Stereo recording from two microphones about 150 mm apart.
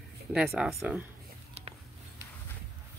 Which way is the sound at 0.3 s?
5° right (ahead or behind).